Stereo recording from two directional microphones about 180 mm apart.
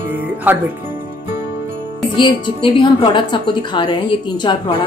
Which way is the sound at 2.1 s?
25° left (ahead or behind).